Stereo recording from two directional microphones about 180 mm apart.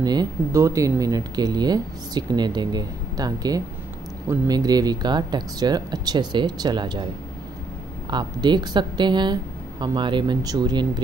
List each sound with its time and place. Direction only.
0.0 s speech: 20° right (ahead or behind)
8.1 s speech: 25° right (ahead or behind)